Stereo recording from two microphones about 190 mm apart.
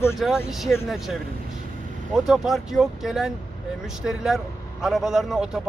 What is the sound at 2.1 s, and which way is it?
A man's voice, centre (ahead or behind).